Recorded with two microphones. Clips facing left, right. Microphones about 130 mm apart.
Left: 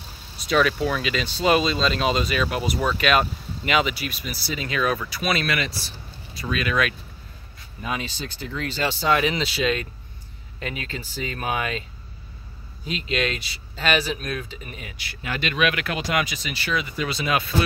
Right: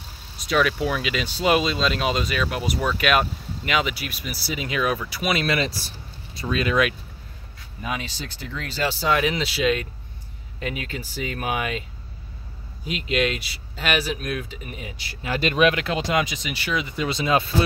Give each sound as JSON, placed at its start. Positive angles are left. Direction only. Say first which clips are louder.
{"t": 0.4, "sound": "speech", "louder": "left 1 dB", "side_deg": -5}
{"t": 5.5, "sound": "speech", "louder": "right 3 dB", "side_deg": -30}
{"t": 7.9, "sound": "speech", "louder": "left 1 dB", "side_deg": 0}
{"t": 12.8, "sound": "speech", "louder": "right 2 dB", "side_deg": -10}
{"t": 15.0, "sound": "speech", "louder": "right 4 dB", "side_deg": -30}